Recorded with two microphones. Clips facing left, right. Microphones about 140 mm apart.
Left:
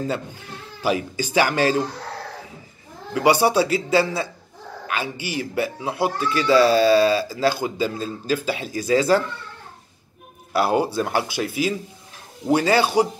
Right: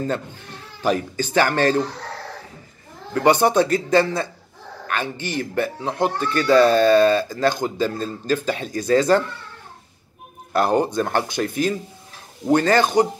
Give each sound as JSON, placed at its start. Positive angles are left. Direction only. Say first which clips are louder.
{"t": 0.0, "sound": "speech", "louder": "right 1 dB", "side_deg": 10}
{"t": 3.2, "sound": "speech", "louder": "right 1 dB", "side_deg": 10}
{"t": 6.1, "sound": "speech", "louder": "right 1 dB", "side_deg": -45}
{"t": 6.6, "sound": "speech", "louder": "right 2 dB", "side_deg": 5}
{"t": 10.5, "sound": "speech", "louder": "right 1 dB", "side_deg": 5}